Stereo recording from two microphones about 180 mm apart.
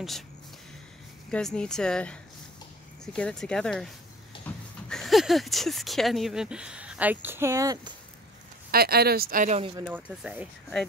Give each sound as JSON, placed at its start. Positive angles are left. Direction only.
{"t": 1.3, "sound": "speech", "side_deg": 5}
{"t": 3.2, "sound": "speech", "side_deg": 5}
{"t": 8.7, "sound": "speech", "side_deg": -60}
{"t": 9.8, "sound": "speech", "side_deg": -5}